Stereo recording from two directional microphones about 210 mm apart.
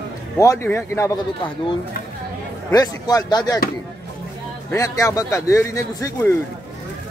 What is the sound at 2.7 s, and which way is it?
Speech, 15° left (ahead or behind).